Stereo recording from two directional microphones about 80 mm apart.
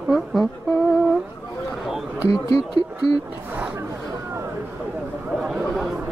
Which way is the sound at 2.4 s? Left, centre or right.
Left.